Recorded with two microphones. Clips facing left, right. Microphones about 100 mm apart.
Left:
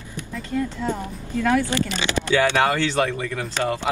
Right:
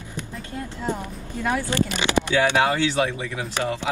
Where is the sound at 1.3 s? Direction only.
15° right (ahead or behind).